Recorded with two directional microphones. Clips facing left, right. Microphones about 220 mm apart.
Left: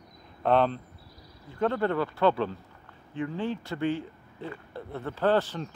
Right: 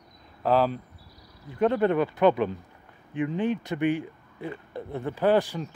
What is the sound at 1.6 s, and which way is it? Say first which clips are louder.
Speech: right 4 dB; 20° right (ahead or behind).